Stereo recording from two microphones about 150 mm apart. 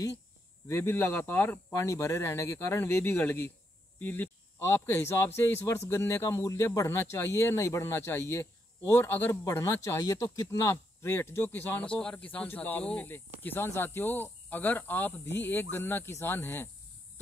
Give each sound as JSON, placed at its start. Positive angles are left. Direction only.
{"t": 0.7, "sound": "speech", "side_deg": 15}